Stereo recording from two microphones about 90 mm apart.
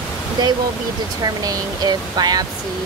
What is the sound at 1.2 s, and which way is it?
Speech, 45° right (ahead or behind).